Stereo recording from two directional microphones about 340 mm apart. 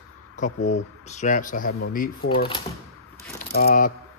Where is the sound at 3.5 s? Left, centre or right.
Left.